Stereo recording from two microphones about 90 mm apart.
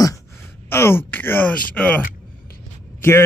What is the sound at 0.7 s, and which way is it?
Groan, 25° left (ahead or behind).